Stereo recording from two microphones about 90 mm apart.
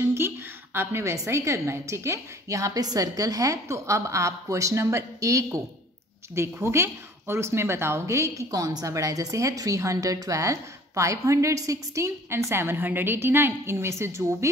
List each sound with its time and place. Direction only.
0.0 s a woman's voice: 30° right (ahead or behind)